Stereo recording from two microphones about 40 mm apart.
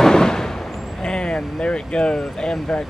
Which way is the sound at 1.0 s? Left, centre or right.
Left.